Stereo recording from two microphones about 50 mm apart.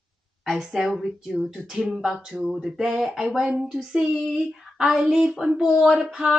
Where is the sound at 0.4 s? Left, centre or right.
Centre.